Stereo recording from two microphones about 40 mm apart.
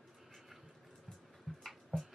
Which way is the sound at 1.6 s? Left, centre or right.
Centre.